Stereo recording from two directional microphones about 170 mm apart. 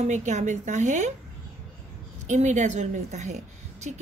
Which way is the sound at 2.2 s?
45° right (ahead or behind).